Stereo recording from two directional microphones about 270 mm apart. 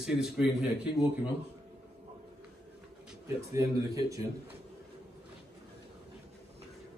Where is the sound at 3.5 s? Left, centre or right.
Centre.